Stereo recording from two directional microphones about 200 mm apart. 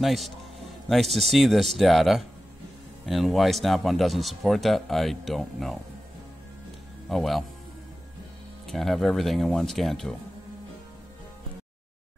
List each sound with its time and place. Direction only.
0.0 s speech: centre (ahead or behind)
7.1 s speech: centre (ahead or behind)
8.6 s speech: centre (ahead or behind)